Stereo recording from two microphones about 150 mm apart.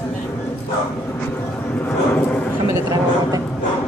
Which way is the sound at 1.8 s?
10° left (ahead or behind).